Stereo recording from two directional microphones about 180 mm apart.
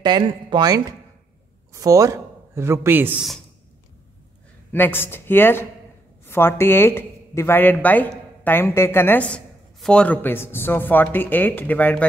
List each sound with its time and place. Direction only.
0.0 s a man's voice: 25° right (ahead or behind)
4.7 s speech: 10° left (ahead or behind)